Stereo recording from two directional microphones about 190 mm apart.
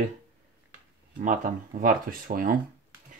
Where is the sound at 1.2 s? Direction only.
45° right (ahead or behind).